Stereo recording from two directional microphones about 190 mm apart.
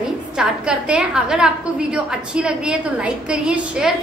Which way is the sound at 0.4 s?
5° right (ahead or behind).